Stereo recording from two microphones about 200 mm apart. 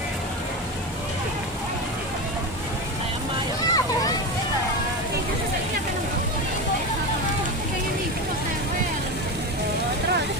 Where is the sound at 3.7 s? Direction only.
20° left (ahead or behind).